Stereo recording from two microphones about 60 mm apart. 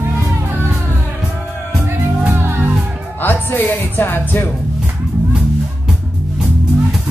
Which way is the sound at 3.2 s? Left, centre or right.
Left.